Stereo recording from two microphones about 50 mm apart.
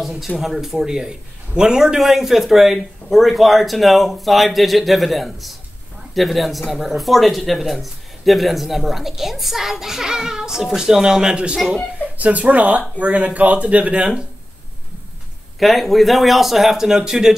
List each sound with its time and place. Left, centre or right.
0.0 s a man's voice: centre
11.5 s speech: centre
12.2 s speech: right
15.6 s speech: centre